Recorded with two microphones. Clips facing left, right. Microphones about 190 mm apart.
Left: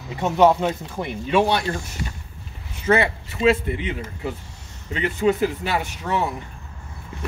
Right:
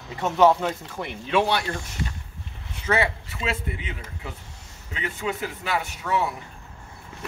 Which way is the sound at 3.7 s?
65° left (ahead or behind).